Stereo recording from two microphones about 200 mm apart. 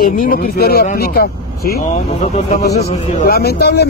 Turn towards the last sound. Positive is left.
turn(degrees=55)  # may be behind; listen again after turning